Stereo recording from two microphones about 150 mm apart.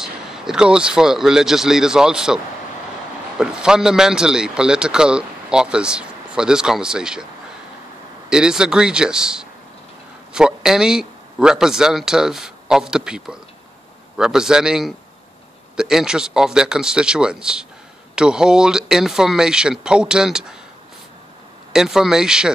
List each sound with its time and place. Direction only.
0.0 s speech: 5° right (ahead or behind)
8.3 s a man's voice: 5° right (ahead or behind)
21.7 s speech: 5° right (ahead or behind)